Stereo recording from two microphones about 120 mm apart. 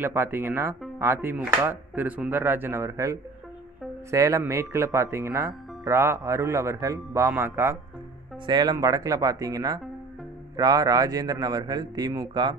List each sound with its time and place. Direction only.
0.0 s speech: 15° right (ahead or behind)
8.5 s speech: 35° right (ahead or behind)